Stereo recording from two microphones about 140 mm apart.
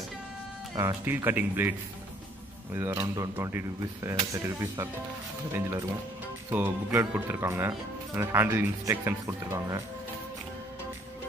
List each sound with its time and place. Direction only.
0.7 s speech: 20° right (ahead or behind)
6.5 s speech: 15° right (ahead or behind)